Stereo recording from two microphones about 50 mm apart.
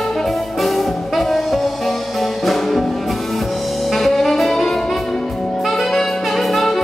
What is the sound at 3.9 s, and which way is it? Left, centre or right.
Saxophone, centre.